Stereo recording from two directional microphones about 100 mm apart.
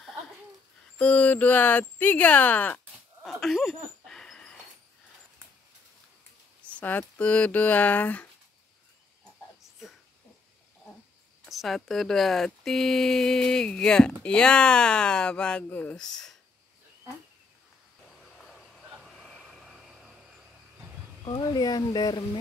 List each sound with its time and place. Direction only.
0.9 s speech: 15° left (ahead or behind)
3.3 s chuckle: centre (ahead or behind)
6.8 s speech: 15° left (ahead or behind)
9.6 s a sound: centre (ahead or behind)
11.4 s speech: centre (ahead or behind)
18.9 s a sound: centre (ahead or behind)
21.3 s speech: 45° left (ahead or behind)